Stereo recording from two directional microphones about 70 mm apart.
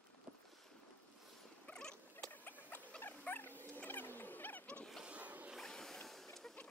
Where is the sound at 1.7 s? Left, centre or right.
Centre.